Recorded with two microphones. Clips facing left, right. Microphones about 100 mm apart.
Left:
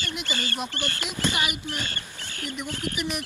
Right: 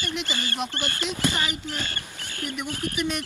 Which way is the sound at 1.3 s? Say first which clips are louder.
Even; 20° left (ahead or behind).